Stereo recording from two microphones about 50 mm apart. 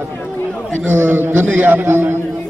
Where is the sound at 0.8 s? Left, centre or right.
Right.